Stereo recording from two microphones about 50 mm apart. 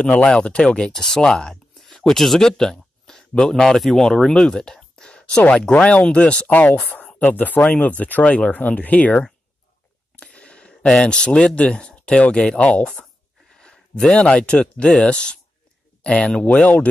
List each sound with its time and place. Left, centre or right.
0.0 s speech: left
0.9 s speech: centre; by 12.8 s left
13.5 s a sound: centre
14.1 s speech: left
16.5 s speech: left